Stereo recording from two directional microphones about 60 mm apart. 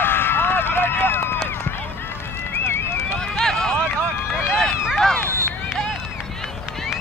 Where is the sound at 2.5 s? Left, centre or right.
Left.